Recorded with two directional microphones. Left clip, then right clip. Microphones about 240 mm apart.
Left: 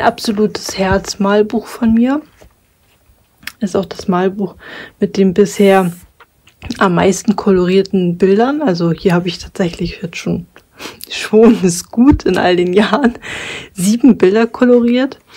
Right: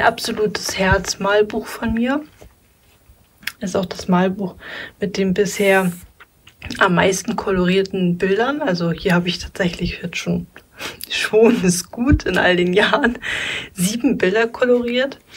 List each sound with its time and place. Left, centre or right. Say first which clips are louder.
0.0 s speech: left 3 dB; left
3.4 s speech: left 4 dB; left